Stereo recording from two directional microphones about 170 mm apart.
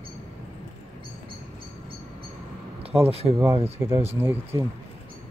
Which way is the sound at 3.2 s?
10° right (ahead or behind).